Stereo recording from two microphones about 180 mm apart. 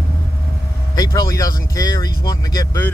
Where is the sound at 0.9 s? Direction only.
20° left (ahead or behind).